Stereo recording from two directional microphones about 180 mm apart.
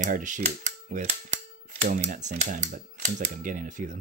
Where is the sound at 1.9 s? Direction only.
40° right (ahead or behind).